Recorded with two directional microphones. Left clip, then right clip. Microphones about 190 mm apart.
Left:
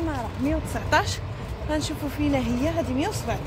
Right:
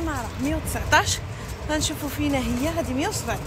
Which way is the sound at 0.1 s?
5° right (ahead or behind).